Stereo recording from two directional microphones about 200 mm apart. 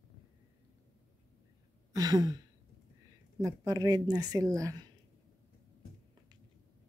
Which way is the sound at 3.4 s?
15° right (ahead or behind).